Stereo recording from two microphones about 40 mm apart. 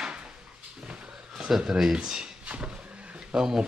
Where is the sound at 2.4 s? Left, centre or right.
Right.